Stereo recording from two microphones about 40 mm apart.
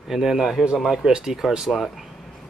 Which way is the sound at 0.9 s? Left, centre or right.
Centre.